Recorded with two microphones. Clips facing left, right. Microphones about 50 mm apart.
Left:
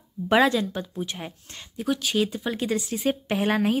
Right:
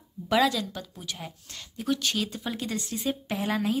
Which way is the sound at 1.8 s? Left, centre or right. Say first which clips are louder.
Left 4 dB; centre.